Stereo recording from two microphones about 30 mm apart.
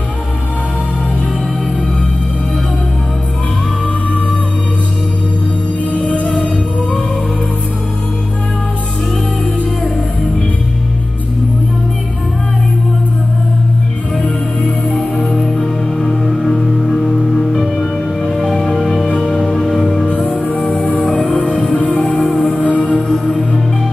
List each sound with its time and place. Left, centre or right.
14.6 s music: centre
21.1 s music: left
22.2 s music: centre
22.6 s music: left